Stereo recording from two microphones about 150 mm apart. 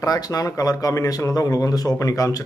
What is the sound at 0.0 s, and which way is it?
Speech, 25° left (ahead or behind).